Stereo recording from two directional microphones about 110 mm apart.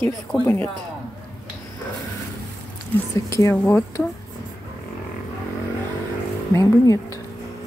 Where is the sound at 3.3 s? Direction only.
25° left (ahead or behind).